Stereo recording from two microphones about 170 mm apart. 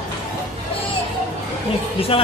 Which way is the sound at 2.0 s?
35° left (ahead or behind).